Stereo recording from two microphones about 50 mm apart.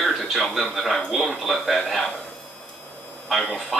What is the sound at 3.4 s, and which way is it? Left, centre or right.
Speech, centre.